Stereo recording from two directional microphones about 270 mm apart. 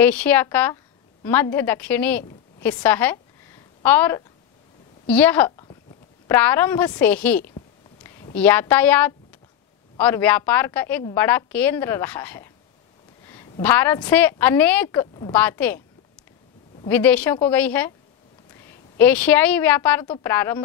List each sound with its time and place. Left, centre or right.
0.0 s a woman's voice: centre
8.0 s a sound: centre
8.4 s a woman's voice: centre
16.8 s a woman's voice: centre